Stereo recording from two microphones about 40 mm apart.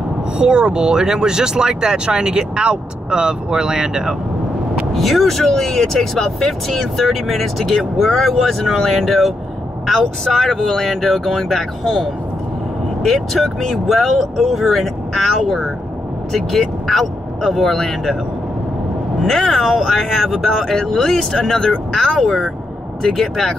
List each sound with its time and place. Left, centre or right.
0.4 s speech: right
4.9 s speech: centre
19.2 s speech: centre